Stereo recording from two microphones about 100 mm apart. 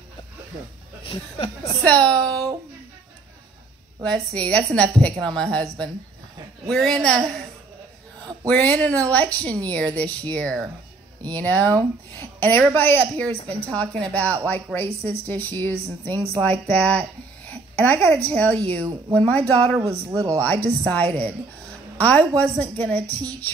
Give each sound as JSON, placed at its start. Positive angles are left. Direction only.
{"t": 1.9, "sound": "speech", "side_deg": 10}
{"t": 4.0, "sound": "a woman's voice", "side_deg": 10}
{"t": 8.5, "sound": "a woman's voice", "side_deg": 15}
{"t": 19.8, "sound": "speech", "side_deg": -30}
{"t": 20.3, "sound": "speech", "side_deg": 15}